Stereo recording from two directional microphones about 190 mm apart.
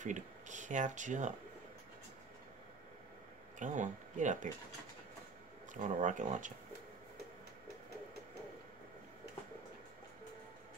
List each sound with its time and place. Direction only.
0.0 s speech: 40° right (ahead or behind)
3.5 s speech: 40° right (ahead or behind)
5.8 s speech: 40° right (ahead or behind)